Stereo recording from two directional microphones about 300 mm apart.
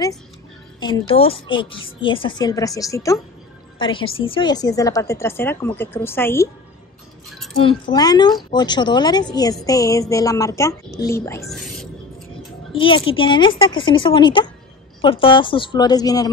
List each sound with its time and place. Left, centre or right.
0.7 s a woman's voice: centre
7.5 s a woman's voice: centre
12.7 s a woman's voice: centre